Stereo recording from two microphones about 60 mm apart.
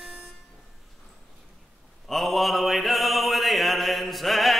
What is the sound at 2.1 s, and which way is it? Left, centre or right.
Mantra, centre.